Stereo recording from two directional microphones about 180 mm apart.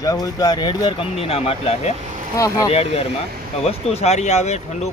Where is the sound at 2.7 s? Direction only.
35° left (ahead or behind).